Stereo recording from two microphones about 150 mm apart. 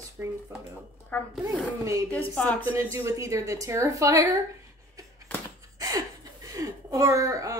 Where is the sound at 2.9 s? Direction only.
20° right (ahead or behind).